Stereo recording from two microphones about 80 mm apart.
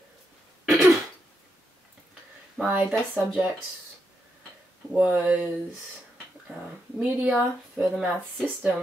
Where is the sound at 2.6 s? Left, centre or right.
Centre.